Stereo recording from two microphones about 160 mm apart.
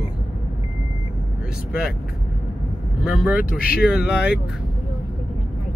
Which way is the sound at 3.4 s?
65° left (ahead or behind).